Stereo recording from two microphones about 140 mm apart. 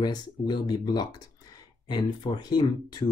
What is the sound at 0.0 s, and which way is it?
Speech, 30° left (ahead or behind).